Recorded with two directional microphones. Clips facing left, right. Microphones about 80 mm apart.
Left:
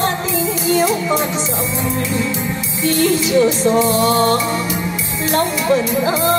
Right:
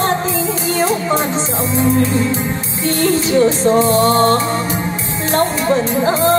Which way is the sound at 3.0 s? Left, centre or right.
Right.